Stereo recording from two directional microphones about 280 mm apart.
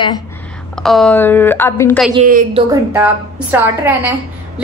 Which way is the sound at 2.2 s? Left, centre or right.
Right.